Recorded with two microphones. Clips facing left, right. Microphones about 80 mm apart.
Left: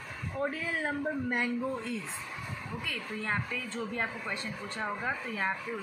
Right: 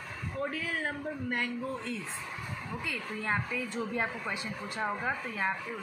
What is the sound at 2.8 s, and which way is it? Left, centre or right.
A woman's voice, centre.